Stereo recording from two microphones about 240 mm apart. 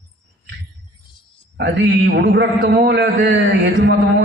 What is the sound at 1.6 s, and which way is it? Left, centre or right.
A man's voice, right.